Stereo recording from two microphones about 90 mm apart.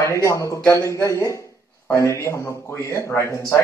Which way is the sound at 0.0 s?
30° left (ahead or behind).